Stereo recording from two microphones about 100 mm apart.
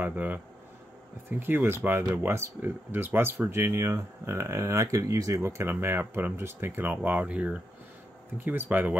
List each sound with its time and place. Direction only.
0.0 s speech: 15° right (ahead or behind)
1.4 s speech: 25° right (ahead or behind)